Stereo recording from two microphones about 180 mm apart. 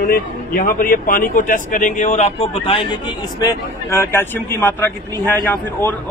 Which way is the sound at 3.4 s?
15° left (ahead or behind).